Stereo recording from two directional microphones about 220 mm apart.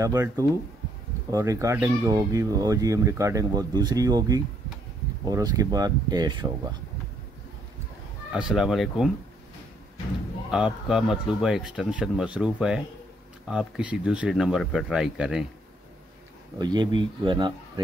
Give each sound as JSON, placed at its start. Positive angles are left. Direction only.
{"t": 0.0, "sound": "speech", "side_deg": -15}
{"t": 8.3, "sound": "speech", "side_deg": -5}
{"t": 10.5, "sound": "speech", "side_deg": 0}
{"t": 16.5, "sound": "speech", "side_deg": -20}